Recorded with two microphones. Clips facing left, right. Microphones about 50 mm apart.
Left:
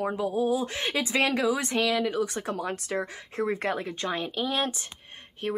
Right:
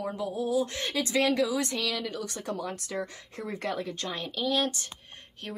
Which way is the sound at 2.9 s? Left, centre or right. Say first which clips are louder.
Left 4 dB; left.